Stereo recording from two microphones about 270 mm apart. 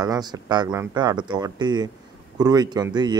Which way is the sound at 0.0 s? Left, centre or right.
Centre.